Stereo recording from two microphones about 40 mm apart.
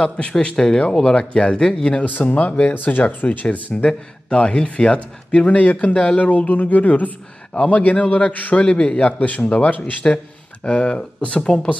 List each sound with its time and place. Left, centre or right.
0.2 s speech: left
2.0 s speech: left
2.7 s speech: left
3.8 s speech: left
8.5 s speech: left